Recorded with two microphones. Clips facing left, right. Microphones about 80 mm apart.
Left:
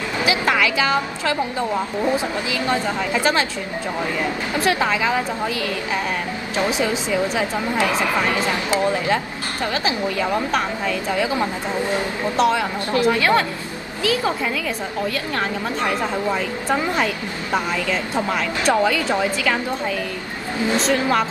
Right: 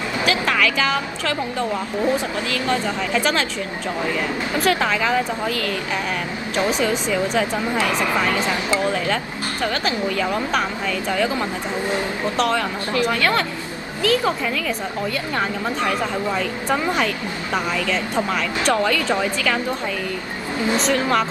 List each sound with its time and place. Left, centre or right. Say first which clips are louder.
0.2 s a woman's voice: left 1 dB; centre
4.6 s a woman's voice: even; centre
8.9 s a woman's voice: left 1 dB; centre
16.9 s a woman's voice: even; centre
20.8 s speech: left 1 dB; centre